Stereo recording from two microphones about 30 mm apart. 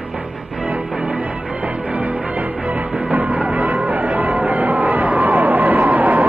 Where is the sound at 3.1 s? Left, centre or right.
Right.